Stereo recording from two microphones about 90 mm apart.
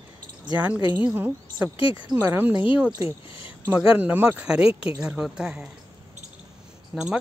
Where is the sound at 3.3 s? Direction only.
80° left.